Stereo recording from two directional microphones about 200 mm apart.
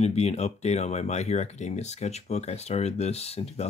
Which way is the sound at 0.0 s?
35° left (ahead or behind).